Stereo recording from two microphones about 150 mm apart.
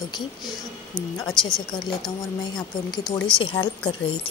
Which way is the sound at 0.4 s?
Centre (ahead or behind).